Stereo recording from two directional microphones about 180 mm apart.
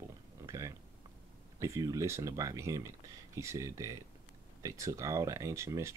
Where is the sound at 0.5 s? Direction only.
15° right (ahead or behind).